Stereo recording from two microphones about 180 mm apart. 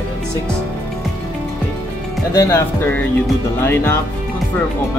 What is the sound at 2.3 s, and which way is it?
Speech, 15° left (ahead or behind).